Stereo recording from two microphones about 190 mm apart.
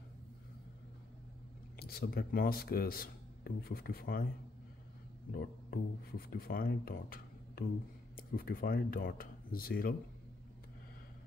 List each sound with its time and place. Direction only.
1.8 s speech: 55° left (ahead or behind)
5.3 s speech: 50° left (ahead or behind)